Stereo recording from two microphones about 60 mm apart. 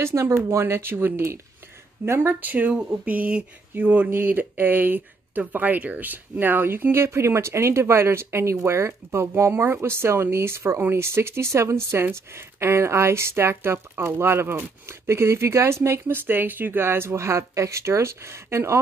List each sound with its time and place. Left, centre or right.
0.0 s speech: right
2.4 s a sound: right
3.7 s speech: right